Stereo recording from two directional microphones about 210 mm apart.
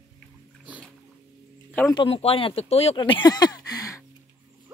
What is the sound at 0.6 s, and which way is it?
Music, 5° right (ahead or behind).